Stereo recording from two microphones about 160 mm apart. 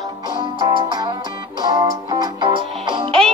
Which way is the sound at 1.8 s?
25° right (ahead or behind).